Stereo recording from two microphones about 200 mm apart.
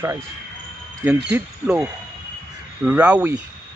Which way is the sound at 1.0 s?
10° right (ahead or behind).